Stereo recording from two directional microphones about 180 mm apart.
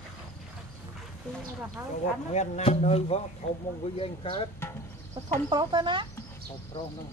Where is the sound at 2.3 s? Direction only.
35° left (ahead or behind).